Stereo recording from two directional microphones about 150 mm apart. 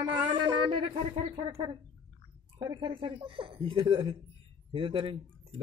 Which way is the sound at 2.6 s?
30° right (ahead or behind).